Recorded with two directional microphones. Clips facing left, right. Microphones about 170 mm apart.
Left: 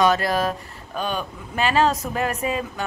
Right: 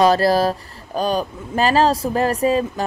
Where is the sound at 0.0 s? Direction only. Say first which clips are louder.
Right 5 dB; 35° right (ahead or behind).